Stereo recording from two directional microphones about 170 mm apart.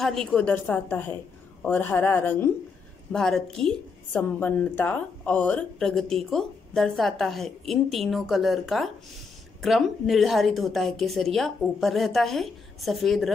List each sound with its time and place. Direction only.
0.0 s a woman's voice: centre (ahead or behind)